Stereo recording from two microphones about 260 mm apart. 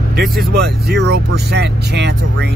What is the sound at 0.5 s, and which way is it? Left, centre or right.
Speech, right.